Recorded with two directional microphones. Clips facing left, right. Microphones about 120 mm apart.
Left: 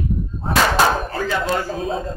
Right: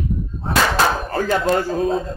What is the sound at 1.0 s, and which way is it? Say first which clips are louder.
Chop: right 3 dB; 45° right (ahead or behind).